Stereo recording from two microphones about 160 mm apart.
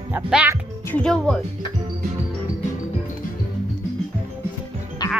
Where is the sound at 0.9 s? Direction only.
5° left (ahead or behind).